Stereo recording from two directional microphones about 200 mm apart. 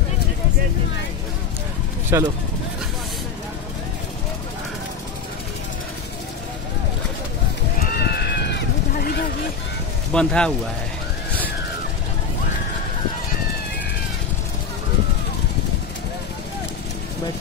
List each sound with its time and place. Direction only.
2.1 s speech: 15° right (ahead or behind)
7.9 s a sound: 55° left (ahead or behind)
10.1 s speech: 5° left (ahead or behind)